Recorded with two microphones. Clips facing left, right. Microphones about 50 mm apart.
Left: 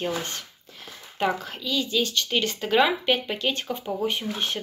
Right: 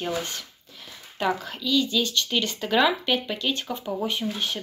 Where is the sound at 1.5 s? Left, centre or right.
Left.